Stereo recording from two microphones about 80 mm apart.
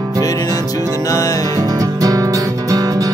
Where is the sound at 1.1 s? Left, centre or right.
Left.